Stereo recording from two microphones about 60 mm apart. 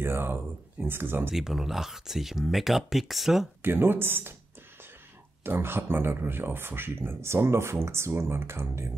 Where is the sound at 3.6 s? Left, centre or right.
Right.